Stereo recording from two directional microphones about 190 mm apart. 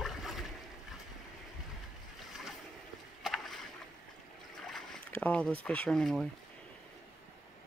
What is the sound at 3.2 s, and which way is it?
Boat, centre (ahead or behind).